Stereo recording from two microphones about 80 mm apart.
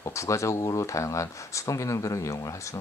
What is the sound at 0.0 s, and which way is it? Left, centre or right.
Speech, left.